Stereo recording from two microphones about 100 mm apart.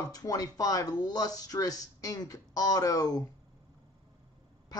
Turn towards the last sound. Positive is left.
turn(degrees=40)  # may be behind; listen again after turning